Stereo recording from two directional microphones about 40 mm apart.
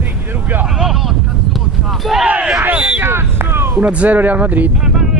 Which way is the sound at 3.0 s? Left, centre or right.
Right.